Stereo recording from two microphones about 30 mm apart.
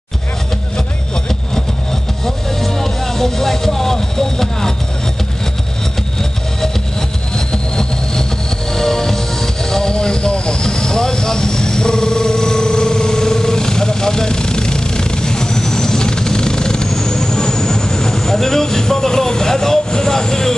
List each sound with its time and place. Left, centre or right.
2.2 s vehicle: centre
7.3 s vehicle: left
8.7 s music: centre
10.3 s vehicle: left